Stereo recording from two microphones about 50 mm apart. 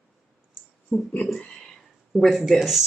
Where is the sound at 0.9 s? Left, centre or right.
Left.